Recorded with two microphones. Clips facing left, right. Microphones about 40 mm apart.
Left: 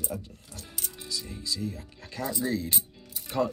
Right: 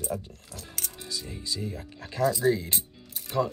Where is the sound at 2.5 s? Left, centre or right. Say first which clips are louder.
Right 5 dB; right.